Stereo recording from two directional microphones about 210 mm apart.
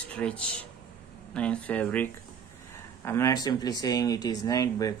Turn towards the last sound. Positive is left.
turn(degrees=15)  # may be behind; listen again after turning